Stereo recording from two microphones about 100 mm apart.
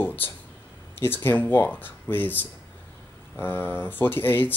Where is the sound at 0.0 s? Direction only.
20° left (ahead or behind).